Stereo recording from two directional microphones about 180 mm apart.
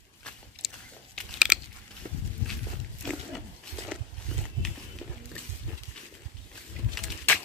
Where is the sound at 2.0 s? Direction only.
50° right (ahead or behind).